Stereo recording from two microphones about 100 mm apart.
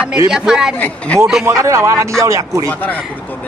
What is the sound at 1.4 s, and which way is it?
A man's voice, 30° right (ahead or behind).